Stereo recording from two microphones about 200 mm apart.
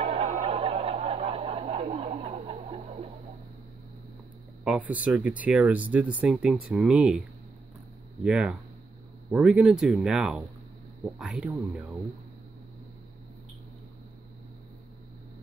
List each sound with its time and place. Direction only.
0.0 s snicker: 30° right (ahead or behind)
4.6 s speech: 5° right (ahead or behind)
8.2 s speech: 5° right (ahead or behind)